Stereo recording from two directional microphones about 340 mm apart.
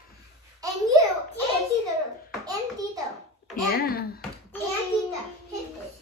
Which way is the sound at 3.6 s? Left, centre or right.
Left.